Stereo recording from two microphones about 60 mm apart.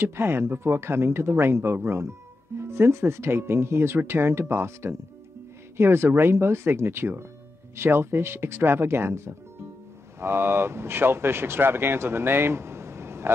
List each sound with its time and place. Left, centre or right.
0.0 s speech: right